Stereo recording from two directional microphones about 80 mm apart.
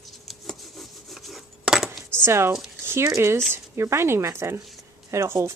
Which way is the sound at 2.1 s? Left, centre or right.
Right.